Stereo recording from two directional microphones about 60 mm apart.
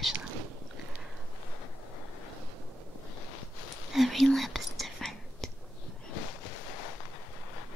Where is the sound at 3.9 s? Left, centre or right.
Centre.